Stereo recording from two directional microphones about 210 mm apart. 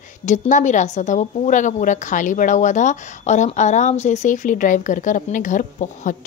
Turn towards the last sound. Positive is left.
turn(degrees=35)  # may be behind; listen again after turning